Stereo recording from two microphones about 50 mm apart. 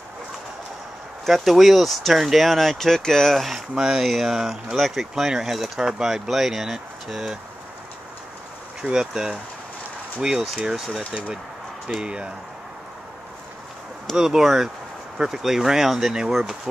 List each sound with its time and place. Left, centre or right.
1.2 s speech: centre
3.7 s speech: centre
8.9 s speech: centre
10.6 s speech: centre
14.1 s speech: centre